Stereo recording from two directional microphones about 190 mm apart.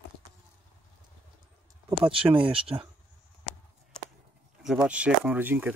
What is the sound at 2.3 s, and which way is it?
Speech, 30° right (ahead or behind).